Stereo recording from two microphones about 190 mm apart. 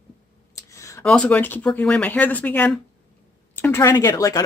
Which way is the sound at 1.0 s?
5° left (ahead or behind).